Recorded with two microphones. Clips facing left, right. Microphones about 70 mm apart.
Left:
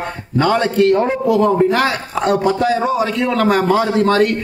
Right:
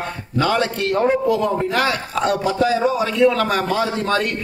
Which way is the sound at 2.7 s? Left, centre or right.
Left.